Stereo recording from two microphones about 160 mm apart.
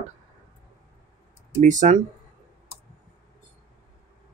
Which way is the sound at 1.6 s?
50° right (ahead or behind).